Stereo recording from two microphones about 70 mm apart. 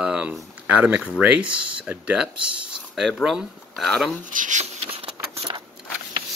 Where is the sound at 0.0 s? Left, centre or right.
Centre.